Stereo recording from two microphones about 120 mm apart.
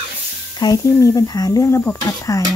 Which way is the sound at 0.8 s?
30° left (ahead or behind).